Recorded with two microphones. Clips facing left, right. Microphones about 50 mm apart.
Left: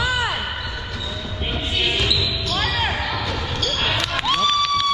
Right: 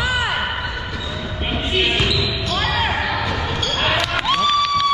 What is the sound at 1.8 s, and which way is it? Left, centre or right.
Basketball bounce, right.